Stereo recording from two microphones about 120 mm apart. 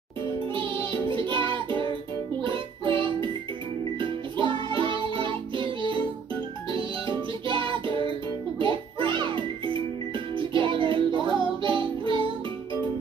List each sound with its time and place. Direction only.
0.6 s music: 40° right (ahead or behind)